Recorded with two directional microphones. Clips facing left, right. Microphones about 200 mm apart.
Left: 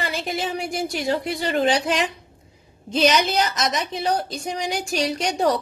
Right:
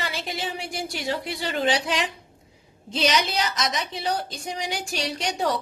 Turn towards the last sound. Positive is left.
turn(degrees=45)  # may be behind; listen again after turning